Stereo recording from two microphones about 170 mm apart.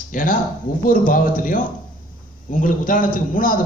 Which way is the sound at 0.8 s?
55° left (ahead or behind).